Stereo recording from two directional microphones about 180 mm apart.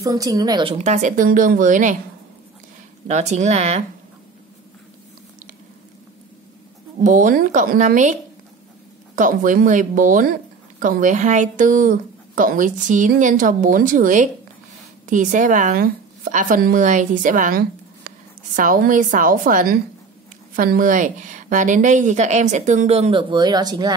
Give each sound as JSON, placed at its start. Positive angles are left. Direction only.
{"t": 0.0, "sound": "a woman's voice", "side_deg": -20}
{"t": 0.7, "sound": "a woman's voice", "side_deg": -40}
{"t": 3.1, "sound": "speech", "side_deg": -40}
{"t": 7.0, "sound": "a woman's voice", "side_deg": -45}